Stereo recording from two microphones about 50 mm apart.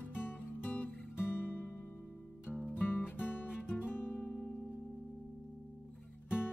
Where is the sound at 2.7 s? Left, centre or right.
Left.